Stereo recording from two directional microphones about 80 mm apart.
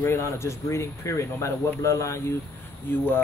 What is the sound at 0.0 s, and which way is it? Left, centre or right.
Speech, left.